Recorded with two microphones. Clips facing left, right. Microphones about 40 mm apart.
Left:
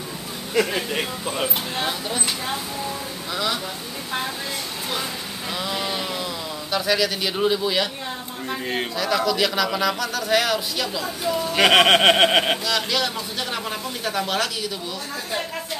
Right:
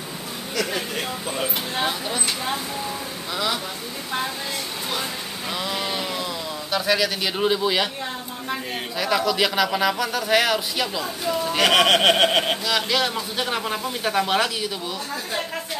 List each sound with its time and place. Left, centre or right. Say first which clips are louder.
0.7 s a sound: left 2 dB; centre
1.8 s speech: right 1 dB; centre
5.5 s speech: even; centre
8.9 s speech: right 2 dB; centre
11.7 s a sound: left 2 dB; left
12.6 s speech: right 1 dB; centre